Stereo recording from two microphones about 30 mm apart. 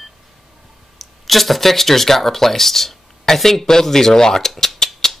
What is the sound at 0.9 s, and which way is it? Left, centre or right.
Speech, centre.